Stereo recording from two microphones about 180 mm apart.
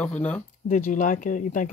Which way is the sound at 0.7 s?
45° left (ahead or behind).